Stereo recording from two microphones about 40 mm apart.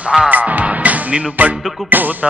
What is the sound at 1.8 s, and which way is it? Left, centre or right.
Music, right.